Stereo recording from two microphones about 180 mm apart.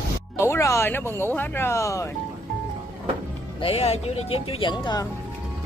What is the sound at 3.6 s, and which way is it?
Speech, 35° left (ahead or behind).